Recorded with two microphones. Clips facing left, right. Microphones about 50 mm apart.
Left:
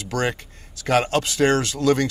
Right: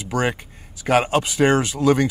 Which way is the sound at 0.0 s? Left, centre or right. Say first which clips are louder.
Right 2 dB; centre.